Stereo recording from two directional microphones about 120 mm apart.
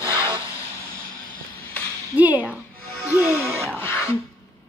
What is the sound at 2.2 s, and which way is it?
Speech, 15° right (ahead or behind).